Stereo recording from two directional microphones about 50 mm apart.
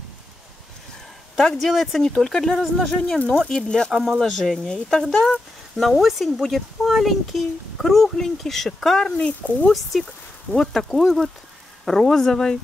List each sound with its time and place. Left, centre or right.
1.6 s speech: centre
3.9 s speech: centre
9.4 s speech: left
9.9 s speech: centre